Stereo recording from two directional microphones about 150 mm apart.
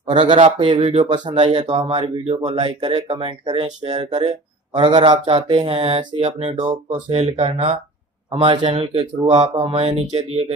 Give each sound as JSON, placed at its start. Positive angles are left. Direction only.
{"t": 0.0, "sound": "speech", "side_deg": -35}
{"t": 8.3, "sound": "speech", "side_deg": -35}
{"t": 9.2, "sound": "speech", "side_deg": -50}